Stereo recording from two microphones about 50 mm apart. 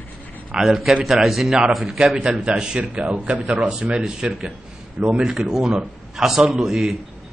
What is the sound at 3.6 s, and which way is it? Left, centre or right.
A man's voice, centre.